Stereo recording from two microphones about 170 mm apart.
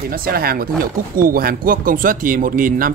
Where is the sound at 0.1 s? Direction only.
60° right (ahead or behind).